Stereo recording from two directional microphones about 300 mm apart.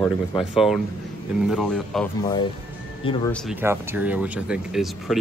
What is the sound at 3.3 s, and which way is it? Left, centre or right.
Speech, centre.